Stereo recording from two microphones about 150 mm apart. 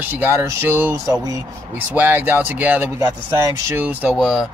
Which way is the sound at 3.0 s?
20° right (ahead or behind).